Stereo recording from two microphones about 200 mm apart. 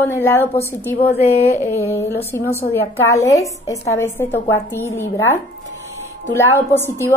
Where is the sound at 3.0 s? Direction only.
15° left (ahead or behind).